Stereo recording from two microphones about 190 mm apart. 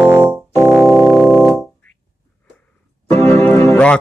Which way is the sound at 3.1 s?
15° left (ahead or behind).